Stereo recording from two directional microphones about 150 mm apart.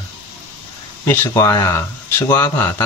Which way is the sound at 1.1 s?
20° left (ahead or behind).